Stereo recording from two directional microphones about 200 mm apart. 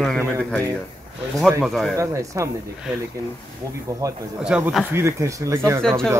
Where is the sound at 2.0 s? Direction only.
15° right (ahead or behind).